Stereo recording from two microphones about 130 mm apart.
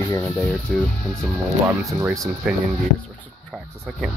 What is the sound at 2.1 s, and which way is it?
Speech, centre (ahead or behind).